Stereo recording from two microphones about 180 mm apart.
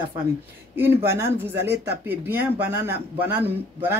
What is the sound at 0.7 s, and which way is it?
Speech, 10° right (ahead or behind).